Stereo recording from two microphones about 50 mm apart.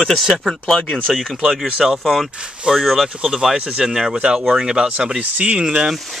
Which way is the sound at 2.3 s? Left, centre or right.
Centre.